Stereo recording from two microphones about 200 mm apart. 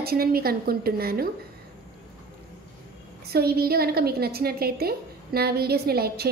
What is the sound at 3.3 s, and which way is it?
A woman's voice, 50° right (ahead or behind).